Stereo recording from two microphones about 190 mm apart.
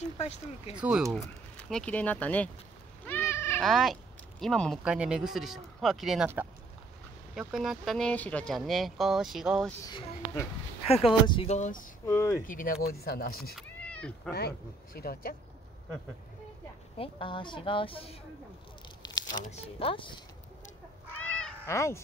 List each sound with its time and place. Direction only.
0.0 s speech: 35° left (ahead or behind)
0.7 s speech: 5° right (ahead or behind)
3.1 s sheep: 10° left (ahead or behind)
3.6 s speech: centre (ahead or behind)
9.8 s speech: 20° left (ahead or behind); by 11.8 s 40° left (ahead or behind)
12.1 s speech: 15° left (ahead or behind)
12.4 s speech: 45° left (ahead or behind)
13.6 s cat: 5° left (ahead or behind)
15.0 s speech: 55° left (ahead or behind)
17.0 s a woman's voice: 25° left (ahead or behind)
19.0 s tearing: 20° left (ahead or behind)
19.4 s a woman's voice: 35° left (ahead or behind)
21.4 s cat: 5° left (ahead or behind)
21.7 s speech: 15° left (ahead or behind)